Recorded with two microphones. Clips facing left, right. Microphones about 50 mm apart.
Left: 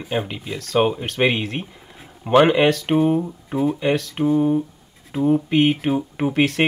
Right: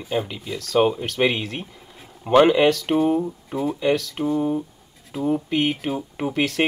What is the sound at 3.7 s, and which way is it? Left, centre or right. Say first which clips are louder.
Speech: even; left.